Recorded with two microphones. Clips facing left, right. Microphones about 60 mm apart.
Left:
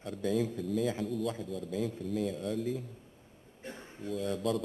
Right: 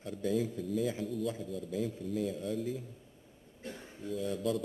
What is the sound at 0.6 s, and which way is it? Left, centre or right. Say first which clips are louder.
Speech: left 2 dB; centre.